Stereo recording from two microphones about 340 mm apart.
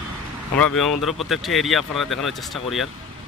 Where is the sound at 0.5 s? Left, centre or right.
Centre.